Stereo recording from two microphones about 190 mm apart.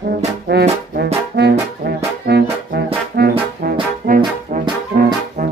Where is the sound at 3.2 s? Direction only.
55° right (ahead or behind).